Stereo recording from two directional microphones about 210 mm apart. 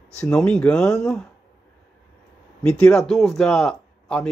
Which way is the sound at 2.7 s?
Centre (ahead or behind).